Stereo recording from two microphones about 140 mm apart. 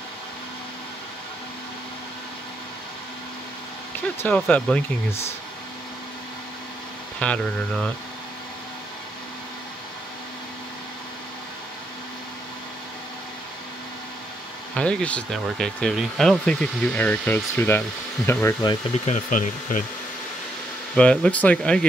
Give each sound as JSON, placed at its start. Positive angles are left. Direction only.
{"t": 4.2, "sound": "speech", "side_deg": 10}
{"t": 7.2, "sound": "speech", "side_deg": 5}
{"t": 14.8, "sound": "speech", "side_deg": 5}
{"t": 19.0, "sound": "speech", "side_deg": 60}
{"t": 20.9, "sound": "speech", "side_deg": 5}